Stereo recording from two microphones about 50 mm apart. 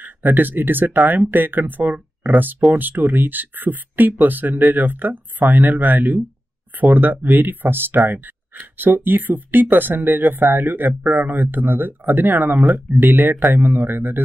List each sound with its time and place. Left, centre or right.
0.0 s speech: right